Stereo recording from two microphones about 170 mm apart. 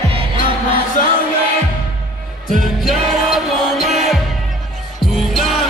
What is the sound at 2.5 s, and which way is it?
Music, centre (ahead or behind).